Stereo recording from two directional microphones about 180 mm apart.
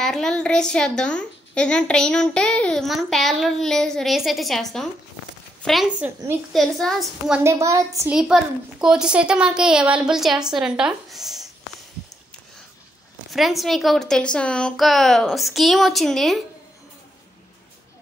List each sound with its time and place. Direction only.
0.0 s a woman's voice: 5° left (ahead or behind)
7.4 s a child's voice: 15° right (ahead or behind)
8.1 s a woman's voice: 5° right (ahead or behind)
13.3 s a woman's voice: centre (ahead or behind)